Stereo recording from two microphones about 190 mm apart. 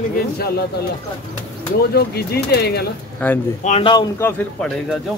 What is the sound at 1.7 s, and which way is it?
Speech, 55° left (ahead or behind).